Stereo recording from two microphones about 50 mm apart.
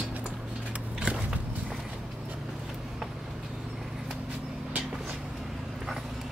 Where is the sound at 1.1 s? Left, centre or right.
Right.